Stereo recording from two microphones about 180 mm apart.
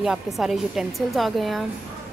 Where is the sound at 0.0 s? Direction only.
5° right (ahead or behind).